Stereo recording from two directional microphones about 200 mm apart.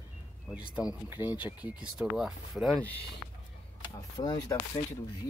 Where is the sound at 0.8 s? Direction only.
5° right (ahead or behind).